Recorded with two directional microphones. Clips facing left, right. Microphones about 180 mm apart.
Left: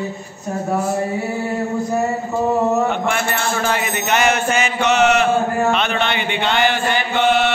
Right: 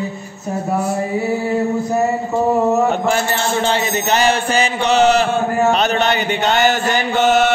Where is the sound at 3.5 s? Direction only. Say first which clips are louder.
Right 3 dB; 30° right (ahead or behind).